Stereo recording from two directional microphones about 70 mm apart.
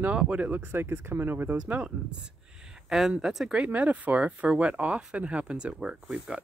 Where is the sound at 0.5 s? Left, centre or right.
Right.